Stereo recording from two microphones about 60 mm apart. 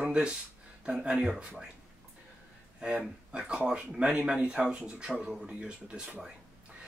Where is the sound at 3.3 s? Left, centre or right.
Centre.